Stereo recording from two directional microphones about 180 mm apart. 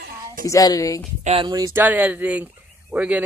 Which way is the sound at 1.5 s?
15° right (ahead or behind).